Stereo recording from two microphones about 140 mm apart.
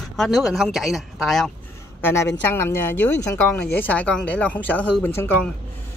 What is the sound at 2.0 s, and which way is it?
Speech, 20° left (ahead or behind).